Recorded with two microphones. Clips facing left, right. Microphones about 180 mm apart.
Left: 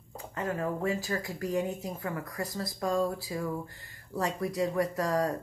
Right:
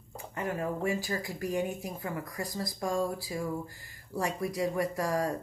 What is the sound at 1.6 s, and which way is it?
Speech, 25° left (ahead or behind).